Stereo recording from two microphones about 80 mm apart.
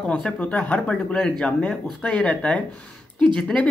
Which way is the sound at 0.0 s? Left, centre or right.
Centre.